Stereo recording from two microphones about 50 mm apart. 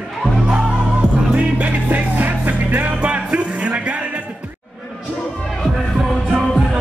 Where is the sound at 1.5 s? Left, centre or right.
Right.